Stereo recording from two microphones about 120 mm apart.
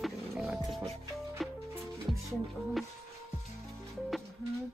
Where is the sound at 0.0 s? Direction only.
Centre (ahead or behind).